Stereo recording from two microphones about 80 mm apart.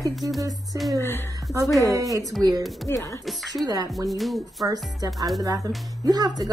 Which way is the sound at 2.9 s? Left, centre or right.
Left.